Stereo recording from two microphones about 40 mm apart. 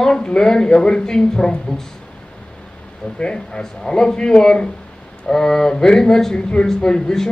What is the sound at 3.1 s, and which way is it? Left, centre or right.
Speech, left.